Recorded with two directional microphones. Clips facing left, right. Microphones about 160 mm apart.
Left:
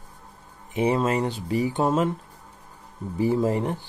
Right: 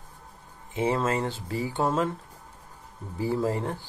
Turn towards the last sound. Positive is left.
turn(degrees=20)  # may be behind; listen again after turning